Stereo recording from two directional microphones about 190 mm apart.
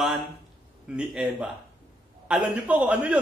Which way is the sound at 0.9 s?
5° right (ahead or behind).